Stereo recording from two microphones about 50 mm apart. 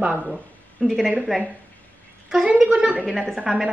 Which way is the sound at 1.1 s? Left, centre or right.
Centre.